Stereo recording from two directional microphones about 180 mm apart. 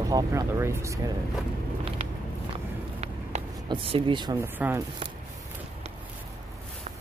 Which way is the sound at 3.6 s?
30° right (ahead or behind).